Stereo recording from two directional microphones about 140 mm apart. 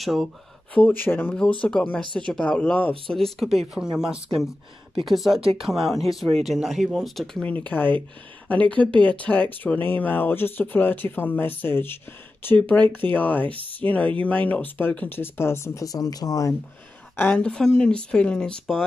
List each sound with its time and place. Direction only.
0.0 s speech: centre (ahead or behind)
0.7 s speech: 10° left (ahead or behind); by 3.9 s 5° right (ahead or behind)
5.0 s speech: centre (ahead or behind)
5.4 s speech: 45° right (ahead or behind)
5.7 s speech: centre (ahead or behind); by 16.5 s 25° left (ahead or behind)
17.2 s speech: 10° left (ahead or behind)